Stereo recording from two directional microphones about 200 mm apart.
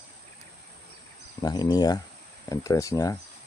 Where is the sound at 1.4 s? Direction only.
20° left (ahead or behind).